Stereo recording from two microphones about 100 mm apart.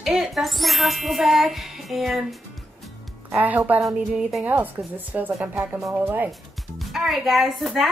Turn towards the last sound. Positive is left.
turn(degrees=0)  # may be behind; listen again after turning